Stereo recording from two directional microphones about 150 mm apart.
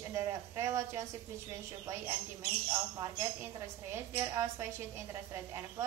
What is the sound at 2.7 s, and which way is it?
Speech, 25° right (ahead or behind).